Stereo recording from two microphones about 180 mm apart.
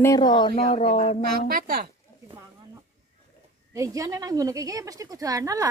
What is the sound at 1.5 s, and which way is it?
Speech, 55° right (ahead or behind).